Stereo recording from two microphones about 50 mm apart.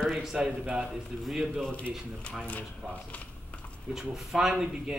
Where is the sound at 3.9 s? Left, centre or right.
Centre.